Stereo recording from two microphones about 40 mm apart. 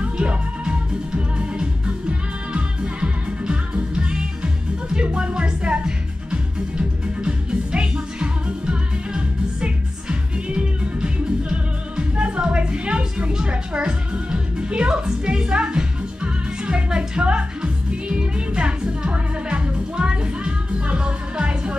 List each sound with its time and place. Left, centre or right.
0.0 s music: right